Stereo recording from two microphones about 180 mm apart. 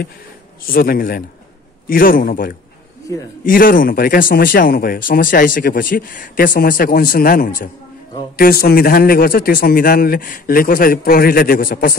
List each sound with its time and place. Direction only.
0.7 s a man's voice: 55° left (ahead or behind)